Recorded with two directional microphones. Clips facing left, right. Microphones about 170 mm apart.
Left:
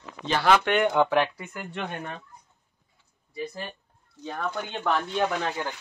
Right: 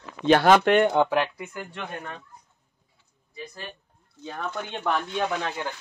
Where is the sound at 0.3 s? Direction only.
55° right (ahead or behind).